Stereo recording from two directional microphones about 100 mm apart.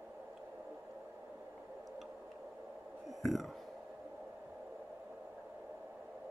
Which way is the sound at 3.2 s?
Centre (ahead or behind).